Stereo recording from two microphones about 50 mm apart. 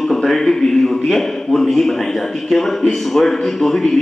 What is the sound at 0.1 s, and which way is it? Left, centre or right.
A man's voice, centre.